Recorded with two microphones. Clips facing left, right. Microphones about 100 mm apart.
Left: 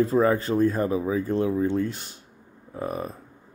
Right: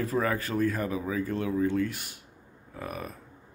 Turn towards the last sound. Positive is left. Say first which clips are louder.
# left 7 dB
turn(degrees=30)  # may be behind; listen again after turning